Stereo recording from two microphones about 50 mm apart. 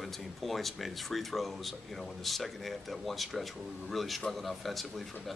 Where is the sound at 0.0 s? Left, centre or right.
Centre.